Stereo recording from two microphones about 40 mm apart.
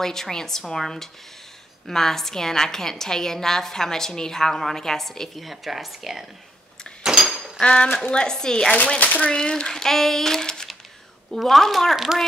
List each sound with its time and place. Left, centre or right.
0.0 s a woman's voice: centre
5.4 s speech: centre
7.0 s door: centre
7.6 s speech: left
8.7 s speech: left
9.3 s speech: left
9.7 s a woman's voice: centre